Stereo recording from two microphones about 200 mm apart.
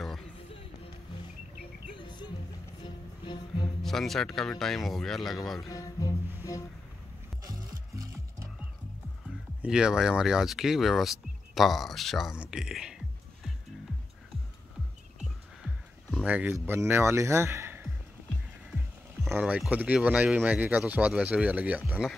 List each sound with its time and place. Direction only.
2.0 s music: 20° left (ahead or behind)
3.8 s speech: centre (ahead or behind)
5.7 s music: 15° left (ahead or behind)
7.9 s music: 15° right (ahead or behind)
9.6 s speech: 5° right (ahead or behind)
15.6 s music: centre (ahead or behind)
19.2 s speech: 5° right (ahead or behind)